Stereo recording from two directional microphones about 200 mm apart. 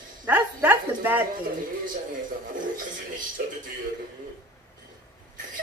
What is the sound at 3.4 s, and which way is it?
Speech, 50° right (ahead or behind).